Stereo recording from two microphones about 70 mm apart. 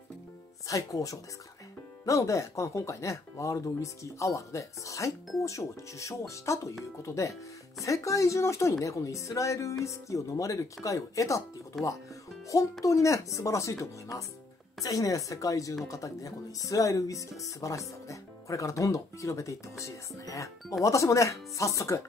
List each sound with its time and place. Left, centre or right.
0.7 s speech: left
11.8 s music: left
12.8 s speech: left
14.8 s speech: left